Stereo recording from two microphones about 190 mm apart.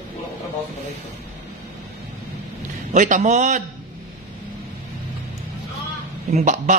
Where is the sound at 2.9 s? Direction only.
40° right (ahead or behind).